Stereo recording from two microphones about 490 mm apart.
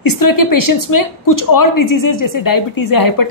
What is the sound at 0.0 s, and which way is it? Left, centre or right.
Speech, left.